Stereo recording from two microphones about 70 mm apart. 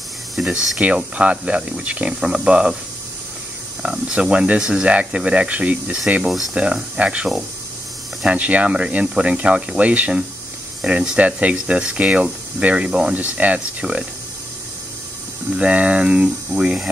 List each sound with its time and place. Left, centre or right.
0.4 s spray: centre
0.7 s speech: centre
3.8 s speech: centre
15.5 s speech: centre